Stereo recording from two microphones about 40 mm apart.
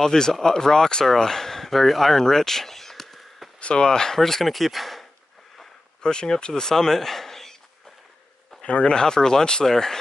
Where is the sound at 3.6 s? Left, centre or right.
Left.